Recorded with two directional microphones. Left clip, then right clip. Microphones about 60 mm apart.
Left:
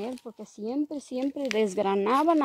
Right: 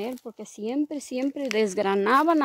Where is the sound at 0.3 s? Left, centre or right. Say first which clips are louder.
Right 3 dB; right.